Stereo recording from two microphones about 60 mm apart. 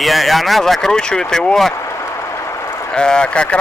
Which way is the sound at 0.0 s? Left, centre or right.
Centre.